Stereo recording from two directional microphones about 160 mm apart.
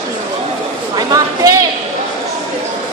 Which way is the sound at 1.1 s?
20° right (ahead or behind).